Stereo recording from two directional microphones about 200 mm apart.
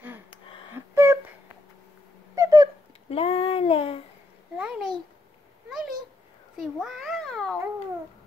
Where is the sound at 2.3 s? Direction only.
15° right (ahead or behind).